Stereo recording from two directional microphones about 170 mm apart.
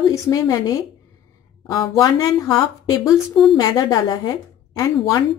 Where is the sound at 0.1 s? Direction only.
20° left (ahead or behind).